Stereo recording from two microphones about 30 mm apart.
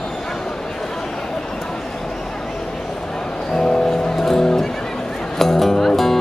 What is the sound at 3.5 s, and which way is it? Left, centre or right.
Music, centre.